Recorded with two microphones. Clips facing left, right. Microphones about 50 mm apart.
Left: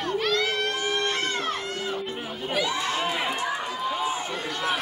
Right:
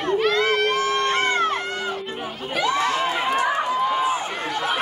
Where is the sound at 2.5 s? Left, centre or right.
Right.